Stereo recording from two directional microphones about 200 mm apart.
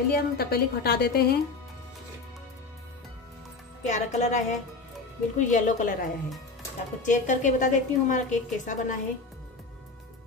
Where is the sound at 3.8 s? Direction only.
35° left (ahead or behind).